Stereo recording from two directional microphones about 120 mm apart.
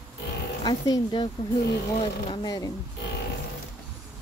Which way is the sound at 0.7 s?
35° left (ahead or behind).